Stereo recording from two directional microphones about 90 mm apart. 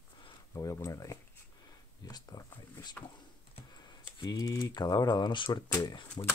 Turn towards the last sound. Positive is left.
turn(degrees=45)  # may be behind; listen again after turning